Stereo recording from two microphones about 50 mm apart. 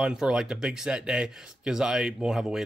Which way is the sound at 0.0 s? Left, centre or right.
Centre.